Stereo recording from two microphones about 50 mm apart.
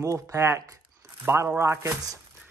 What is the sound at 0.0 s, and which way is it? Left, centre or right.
Speech, right.